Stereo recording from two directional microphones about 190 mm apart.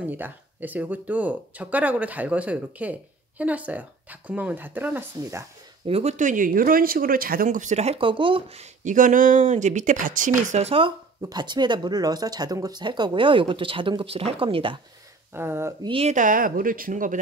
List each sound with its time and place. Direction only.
0.0 s speech: 10° right (ahead or behind)
5.9 s speech: 35° right (ahead or behind)
11.1 s speech: 20° right (ahead or behind)
15.3 s speech: 10° right (ahead or behind)
15.9 s speech: 35° right (ahead or behind)